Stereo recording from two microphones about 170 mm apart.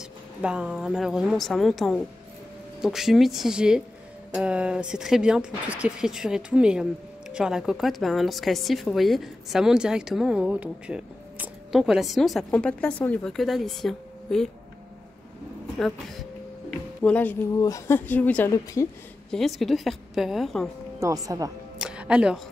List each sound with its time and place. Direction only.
0.4 s speech: 5° right (ahead or behind)
17.0 s speech: 10° left (ahead or behind)
17.6 s speech: 20° left (ahead or behind)
19.3 s speech: centre (ahead or behind)
21.0 s speech: 20° right (ahead or behind)
21.7 s music: 5° right (ahead or behind)